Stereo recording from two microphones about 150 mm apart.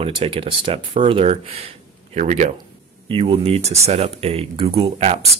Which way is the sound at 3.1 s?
35° right (ahead or behind).